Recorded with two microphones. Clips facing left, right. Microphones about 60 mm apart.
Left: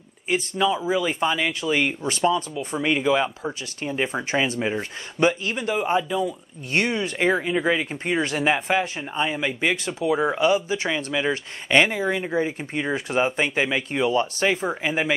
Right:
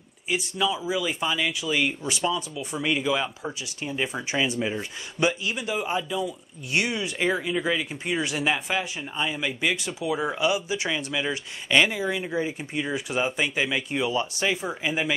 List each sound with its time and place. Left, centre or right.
0.3 s speech: left
2.2 s speech: left
4.1 s speech: left
4.6 s speech: left
5.4 s speech: left
5.8 s speech: left
6.2 s speech: left
8.5 s speech: left
10.5 s speech: left
11.1 s speech: left
14.4 s speech: left